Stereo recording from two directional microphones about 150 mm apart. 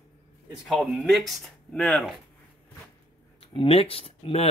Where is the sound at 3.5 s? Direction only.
40° left (ahead or behind).